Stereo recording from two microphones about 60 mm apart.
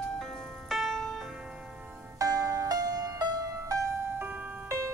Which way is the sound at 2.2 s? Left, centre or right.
Right.